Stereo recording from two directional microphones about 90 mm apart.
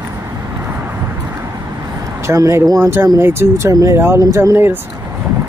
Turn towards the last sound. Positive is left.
turn(degrees=-25)  # may be behind; listen again after turning